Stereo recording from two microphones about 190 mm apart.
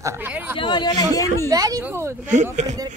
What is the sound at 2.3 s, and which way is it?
Speech, 40° right (ahead or behind).